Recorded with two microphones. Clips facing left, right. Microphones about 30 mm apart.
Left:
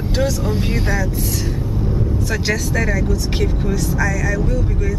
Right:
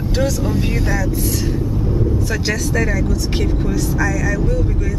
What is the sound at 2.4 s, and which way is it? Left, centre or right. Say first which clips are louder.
Speech: even; centre.